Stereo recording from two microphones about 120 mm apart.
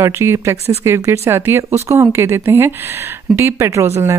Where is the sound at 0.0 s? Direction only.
20° right (ahead or behind).